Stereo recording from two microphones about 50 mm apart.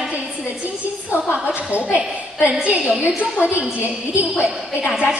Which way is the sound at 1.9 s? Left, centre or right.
Right.